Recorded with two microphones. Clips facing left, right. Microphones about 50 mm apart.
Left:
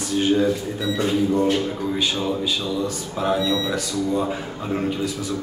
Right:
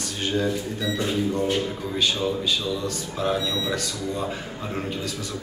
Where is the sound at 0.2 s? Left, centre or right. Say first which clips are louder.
Left 5 dB; centre.